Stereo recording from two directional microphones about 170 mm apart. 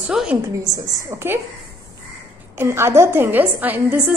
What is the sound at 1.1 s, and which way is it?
Speech, 15° right (ahead or behind).